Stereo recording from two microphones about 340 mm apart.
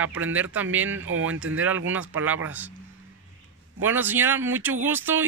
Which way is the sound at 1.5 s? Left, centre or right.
Right.